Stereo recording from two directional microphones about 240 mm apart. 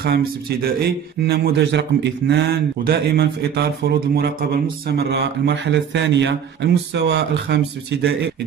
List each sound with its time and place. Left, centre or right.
0.0 s a man's voice: right